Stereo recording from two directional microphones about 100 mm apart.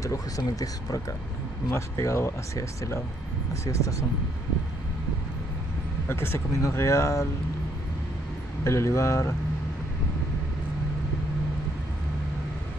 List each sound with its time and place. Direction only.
0.0 s speech: 35° left (ahead or behind)
6.0 s speech: 25° left (ahead or behind)
8.6 s speech: 30° left (ahead or behind)